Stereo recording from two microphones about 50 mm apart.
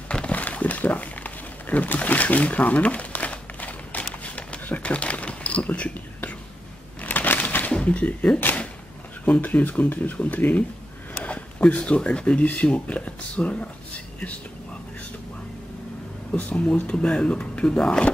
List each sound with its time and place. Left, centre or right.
0.1 s a sound: left
7.0 s crushing: left
7.7 s speech: left
16.3 s speech: left